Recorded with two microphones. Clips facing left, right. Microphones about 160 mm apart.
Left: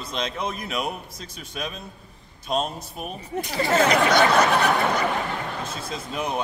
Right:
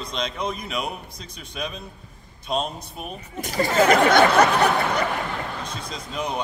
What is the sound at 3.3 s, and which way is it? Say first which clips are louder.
Speech: right 1 dB; 45° right (ahead or behind).